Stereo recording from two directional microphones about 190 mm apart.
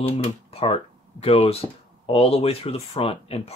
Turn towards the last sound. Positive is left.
turn(degrees=30)  # may be behind; listen again after turning